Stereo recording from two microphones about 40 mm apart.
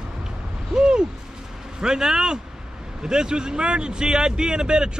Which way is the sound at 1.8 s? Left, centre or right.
Centre.